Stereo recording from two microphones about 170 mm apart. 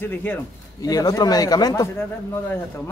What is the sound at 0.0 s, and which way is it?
A man's voice, 10° left (ahead or behind).